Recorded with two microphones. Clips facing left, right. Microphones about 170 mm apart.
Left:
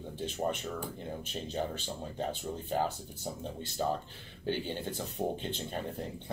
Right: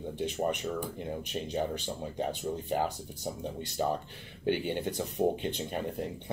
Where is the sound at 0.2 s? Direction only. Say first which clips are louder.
Right 2 dB; 15° right (ahead or behind).